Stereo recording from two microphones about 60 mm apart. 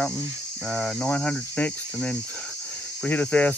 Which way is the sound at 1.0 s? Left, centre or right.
Left.